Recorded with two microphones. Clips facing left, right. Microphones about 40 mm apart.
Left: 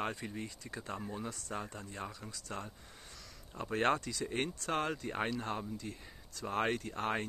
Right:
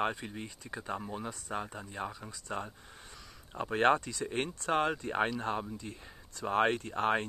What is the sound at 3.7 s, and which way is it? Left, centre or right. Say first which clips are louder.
Speech: right 5 dB; right.